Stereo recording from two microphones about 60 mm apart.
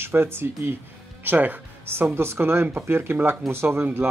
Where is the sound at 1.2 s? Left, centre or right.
Right.